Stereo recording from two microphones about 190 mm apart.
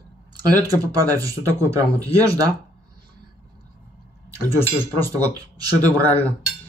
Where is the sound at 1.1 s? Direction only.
15° right (ahead or behind).